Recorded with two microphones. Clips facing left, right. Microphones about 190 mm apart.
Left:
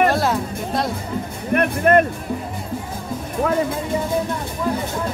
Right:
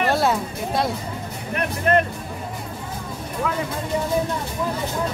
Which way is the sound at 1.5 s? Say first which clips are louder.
Left 5 dB; 55° left (ahead or behind).